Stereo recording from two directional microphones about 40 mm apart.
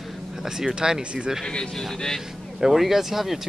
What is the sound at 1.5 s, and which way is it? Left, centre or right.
Speech, left.